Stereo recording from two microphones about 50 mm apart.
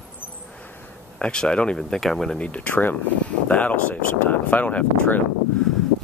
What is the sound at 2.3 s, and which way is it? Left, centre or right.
Speech, left.